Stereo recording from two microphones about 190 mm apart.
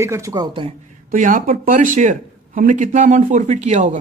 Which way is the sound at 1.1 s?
45° right (ahead or behind).